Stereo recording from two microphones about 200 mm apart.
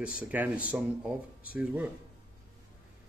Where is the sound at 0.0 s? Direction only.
5° right (ahead or behind).